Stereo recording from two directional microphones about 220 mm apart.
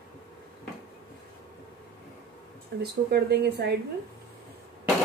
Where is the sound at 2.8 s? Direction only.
50° right (ahead or behind).